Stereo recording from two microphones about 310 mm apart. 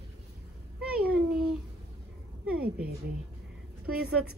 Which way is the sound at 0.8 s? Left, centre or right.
Centre.